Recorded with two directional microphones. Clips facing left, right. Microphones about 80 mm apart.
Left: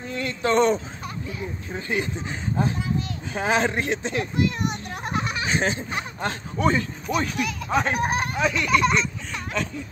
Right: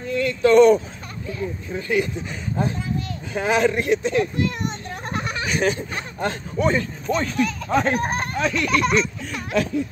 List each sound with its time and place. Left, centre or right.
0.1 s a sound: left
1.7 s speech: left
5.4 s speech: left
7.1 s speech: centre